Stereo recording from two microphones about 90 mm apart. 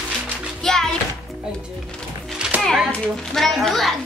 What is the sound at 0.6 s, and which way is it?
Music, 5° left (ahead or behind).